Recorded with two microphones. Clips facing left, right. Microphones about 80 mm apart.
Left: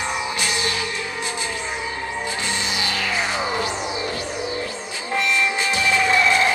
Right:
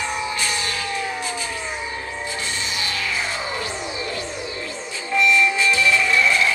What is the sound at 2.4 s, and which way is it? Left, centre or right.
Music, centre.